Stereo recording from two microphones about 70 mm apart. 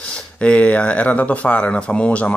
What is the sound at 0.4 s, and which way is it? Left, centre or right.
Speech, centre.